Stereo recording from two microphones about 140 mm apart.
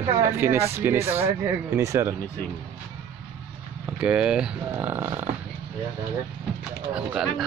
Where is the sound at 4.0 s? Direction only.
10° right (ahead or behind).